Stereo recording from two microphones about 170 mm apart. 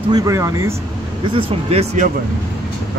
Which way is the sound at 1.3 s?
35° right (ahead or behind).